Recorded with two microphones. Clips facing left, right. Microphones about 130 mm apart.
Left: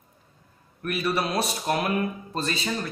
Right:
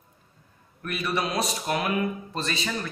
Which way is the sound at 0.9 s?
30° left (ahead or behind).